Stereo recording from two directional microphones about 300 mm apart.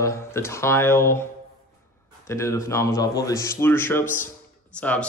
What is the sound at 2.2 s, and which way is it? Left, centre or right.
Speech, centre.